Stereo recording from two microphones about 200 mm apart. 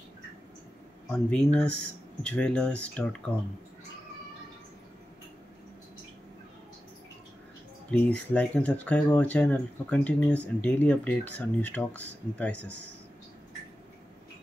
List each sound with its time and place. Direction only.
1.1 s speech: 5° left (ahead or behind)
7.9 s speech: 5° left (ahead or behind)